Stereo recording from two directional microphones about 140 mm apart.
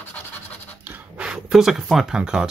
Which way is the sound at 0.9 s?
10° right (ahead or behind).